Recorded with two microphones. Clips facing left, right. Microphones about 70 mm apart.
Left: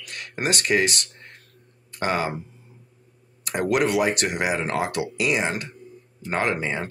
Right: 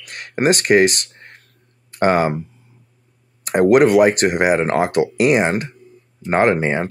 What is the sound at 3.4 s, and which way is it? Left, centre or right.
Speech, right.